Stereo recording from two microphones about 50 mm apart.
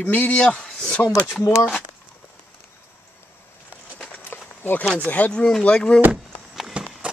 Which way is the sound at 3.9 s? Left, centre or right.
Left.